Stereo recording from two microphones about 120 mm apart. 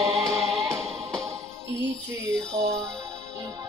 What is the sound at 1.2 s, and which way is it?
Music, 25° right (ahead or behind).